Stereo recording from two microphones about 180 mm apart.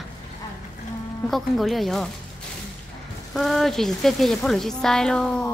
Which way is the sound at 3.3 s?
Centre (ahead or behind).